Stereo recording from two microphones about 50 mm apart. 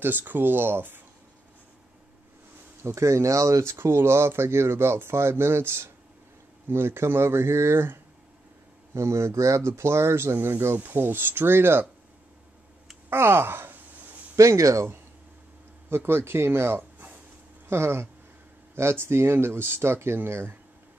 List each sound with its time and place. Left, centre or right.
0.0 s speech: right
2.8 s speech: right
3.7 s speech: right
8.9 s speech: right
9.7 s speech: right
13.1 s sigh: right
14.3 s speech: right
15.9 s speech: right